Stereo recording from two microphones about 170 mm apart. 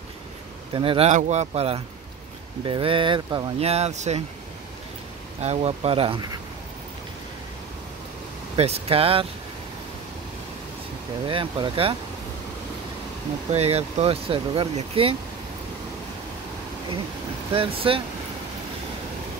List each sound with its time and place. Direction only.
0.7 s speech: 35° right (ahead or behind)
3.5 s speech: 35° right (ahead or behind)
5.4 s speech: 40° right (ahead or behind)
8.5 s speech: 35° right (ahead or behind)
11.2 s speech: 30° right (ahead or behind)
13.5 s speech: 35° right (ahead or behind)
17.6 s speech: 30° right (ahead or behind)